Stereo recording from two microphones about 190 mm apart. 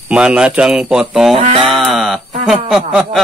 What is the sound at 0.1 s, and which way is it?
Speech, 5° right (ahead or behind).